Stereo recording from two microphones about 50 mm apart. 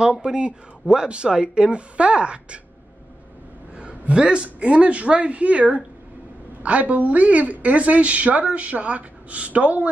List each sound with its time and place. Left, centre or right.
0.0 s a woman's voice: centre
3.7 s a woman's voice: right